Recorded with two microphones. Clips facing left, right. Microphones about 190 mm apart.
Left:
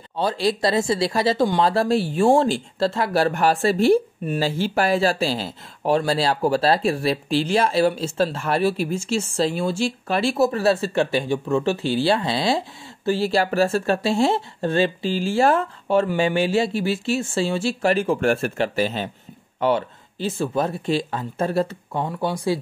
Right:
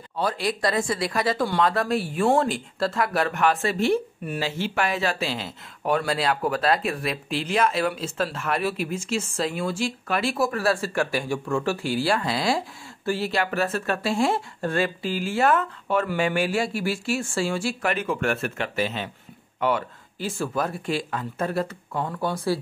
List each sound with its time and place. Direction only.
0.1 s speech: 25° left (ahead or behind)
22.1 s speech: 15° left (ahead or behind)